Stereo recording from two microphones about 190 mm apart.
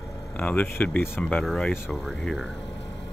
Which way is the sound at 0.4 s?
10° left (ahead or behind).